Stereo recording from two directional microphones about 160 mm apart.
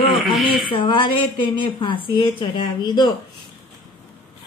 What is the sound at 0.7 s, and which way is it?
A woman's voice, 30° left (ahead or behind).